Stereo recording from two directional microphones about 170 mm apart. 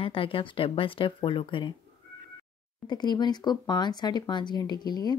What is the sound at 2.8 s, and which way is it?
Speech, 25° left (ahead or behind).